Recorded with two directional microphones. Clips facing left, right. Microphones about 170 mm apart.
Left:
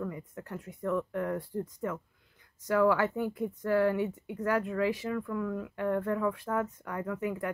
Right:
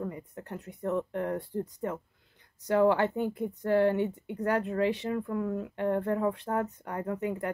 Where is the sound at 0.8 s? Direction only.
30° right (ahead or behind).